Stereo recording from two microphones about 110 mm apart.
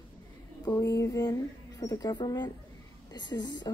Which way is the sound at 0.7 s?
30° left (ahead or behind).